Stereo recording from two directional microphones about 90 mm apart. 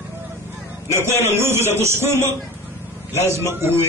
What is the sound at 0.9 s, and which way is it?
A man's voice, 30° right (ahead or behind).